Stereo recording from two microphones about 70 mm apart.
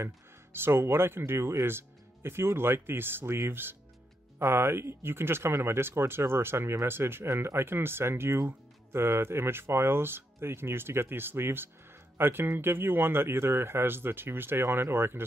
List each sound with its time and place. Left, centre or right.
0.0 s speech: right